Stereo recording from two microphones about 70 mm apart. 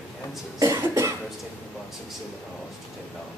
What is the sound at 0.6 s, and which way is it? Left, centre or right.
Cough, right.